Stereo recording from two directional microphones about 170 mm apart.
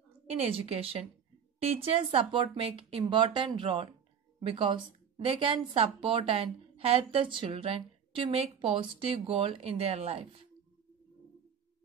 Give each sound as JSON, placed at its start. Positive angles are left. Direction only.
{"t": 0.3, "sound": "speech", "side_deg": -35}